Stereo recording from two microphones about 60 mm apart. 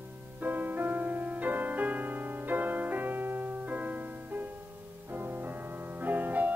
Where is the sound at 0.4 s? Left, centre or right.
Right.